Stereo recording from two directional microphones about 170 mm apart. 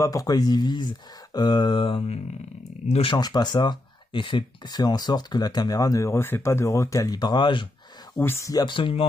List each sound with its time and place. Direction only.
0.0 s speech: 20° left (ahead or behind)
8.1 s speech: 15° left (ahead or behind)